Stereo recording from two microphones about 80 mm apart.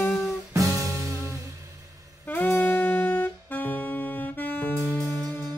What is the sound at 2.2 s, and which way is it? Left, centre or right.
Saxophone, left.